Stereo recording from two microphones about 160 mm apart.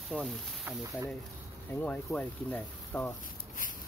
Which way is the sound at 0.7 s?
15° right (ahead or behind).